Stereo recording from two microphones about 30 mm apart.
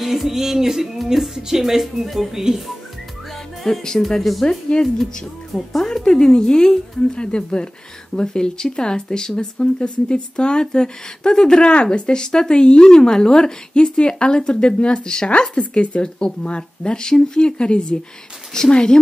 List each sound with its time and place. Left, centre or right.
0.0 s music: centre
1.0 s speech: centre
3.6 s speech: centre
4.2 s speech: centre
4.5 s speech: left
5.5 s speech: centre
6.0 s speech: left
13.9 s speech: left
15.7 s speech: left
16.4 s speech: left